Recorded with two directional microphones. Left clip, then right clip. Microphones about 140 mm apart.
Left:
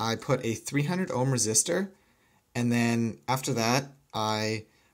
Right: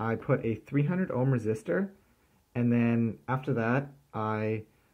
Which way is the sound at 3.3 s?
55° left (ahead or behind).